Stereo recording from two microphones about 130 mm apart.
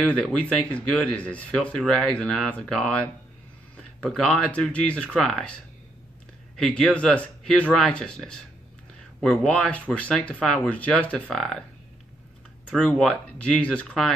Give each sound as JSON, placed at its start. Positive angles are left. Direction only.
{"t": 0.0, "sound": "speech", "side_deg": 5}
{"t": 12.6, "sound": "speech", "side_deg": 5}